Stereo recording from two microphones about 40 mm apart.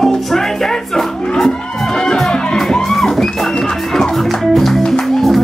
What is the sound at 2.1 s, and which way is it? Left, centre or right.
Music, centre.